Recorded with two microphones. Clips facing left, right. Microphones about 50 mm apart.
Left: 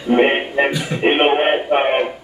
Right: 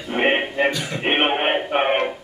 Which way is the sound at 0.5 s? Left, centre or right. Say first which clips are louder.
Left 3 dB; left.